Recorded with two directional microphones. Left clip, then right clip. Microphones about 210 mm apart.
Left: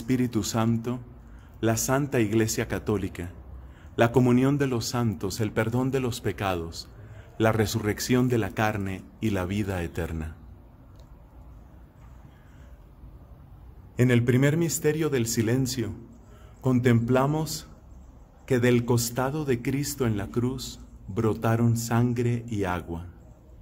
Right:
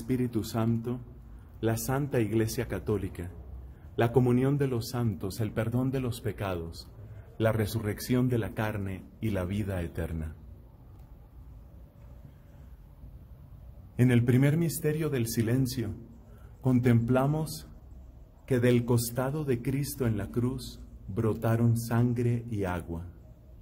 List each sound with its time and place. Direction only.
0.1 s a man's voice: 15° left (ahead or behind)
13.9 s a man's voice: 5° left (ahead or behind)